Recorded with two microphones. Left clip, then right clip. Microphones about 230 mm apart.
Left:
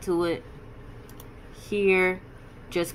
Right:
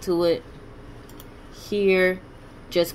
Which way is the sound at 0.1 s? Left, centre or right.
Centre.